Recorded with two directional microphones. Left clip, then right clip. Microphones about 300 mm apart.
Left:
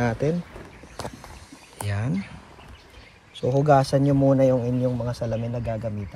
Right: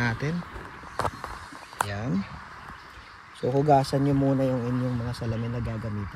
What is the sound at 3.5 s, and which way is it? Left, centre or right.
Speech, left.